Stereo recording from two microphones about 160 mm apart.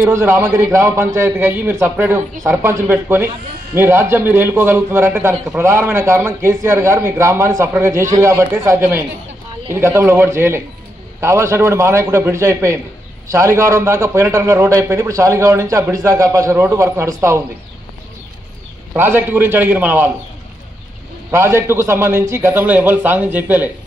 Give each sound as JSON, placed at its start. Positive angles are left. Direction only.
{"t": 0.0, "sound": "a man's voice", "side_deg": -15}
{"t": 18.9, "sound": "a man's voice", "side_deg": -15}
{"t": 21.3, "sound": "a man's voice", "side_deg": -15}